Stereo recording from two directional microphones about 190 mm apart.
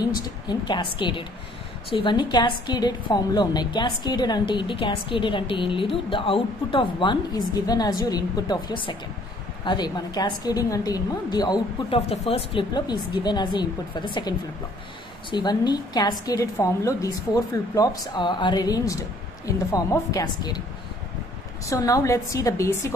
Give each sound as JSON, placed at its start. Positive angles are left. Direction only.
{"t": 0.1, "sound": "a woman's voice", "side_deg": 20}
{"t": 15.3, "sound": "a woman's voice", "side_deg": 20}
{"t": 21.6, "sound": "a woman's voice", "side_deg": 15}